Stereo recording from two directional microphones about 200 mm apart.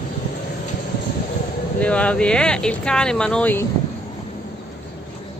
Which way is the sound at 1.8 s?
5° left (ahead or behind).